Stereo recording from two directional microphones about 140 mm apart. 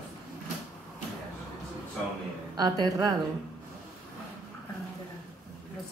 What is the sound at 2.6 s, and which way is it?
Speech, 25° right (ahead or behind).